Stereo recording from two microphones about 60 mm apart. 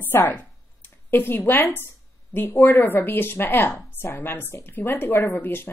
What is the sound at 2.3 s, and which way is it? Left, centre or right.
A woman's voice, left.